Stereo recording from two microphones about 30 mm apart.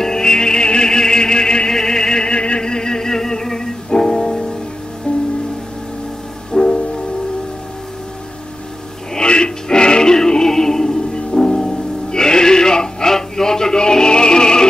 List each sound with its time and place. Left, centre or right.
0.0 s music: left
5.1 s music: left
6.5 s music: centre
9.1 s music: left